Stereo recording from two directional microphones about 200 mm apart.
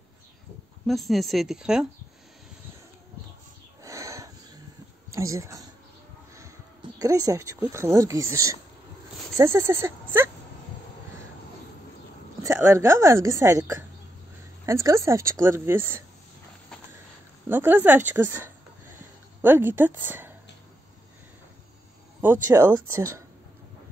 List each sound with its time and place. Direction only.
0.8 s speech: centre (ahead or behind)
3.8 s a sound: 15° right (ahead or behind)
5.1 s speech: 15° right (ahead or behind)
7.0 s a woman's voice: 15° right (ahead or behind)
12.4 s a woman's voice: 15° right (ahead or behind)
17.5 s speech: 10° right (ahead or behind)
22.2 s a woman's voice: 10° right (ahead or behind)